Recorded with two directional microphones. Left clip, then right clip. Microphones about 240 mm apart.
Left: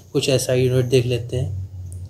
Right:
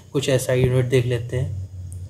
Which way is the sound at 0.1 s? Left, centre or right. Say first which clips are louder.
Left 1 dB; centre.